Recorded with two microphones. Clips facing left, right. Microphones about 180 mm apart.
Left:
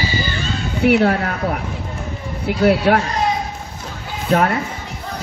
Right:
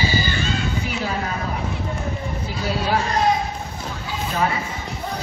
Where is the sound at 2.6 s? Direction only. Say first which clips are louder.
Left 10 dB; 65° left (ahead or behind).